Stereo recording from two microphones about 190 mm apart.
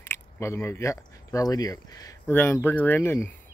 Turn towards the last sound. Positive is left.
turn(degrees=10)  # may be behind; listen again after turning